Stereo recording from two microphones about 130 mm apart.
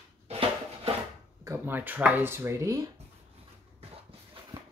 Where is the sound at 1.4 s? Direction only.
20° right (ahead or behind).